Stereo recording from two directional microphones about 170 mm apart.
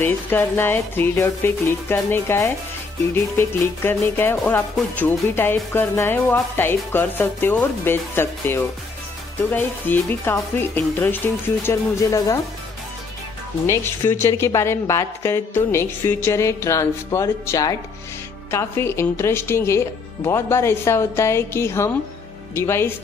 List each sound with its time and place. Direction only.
0.0 s speech: 10° left (ahead or behind)
13.7 s speech: 15° left (ahead or behind)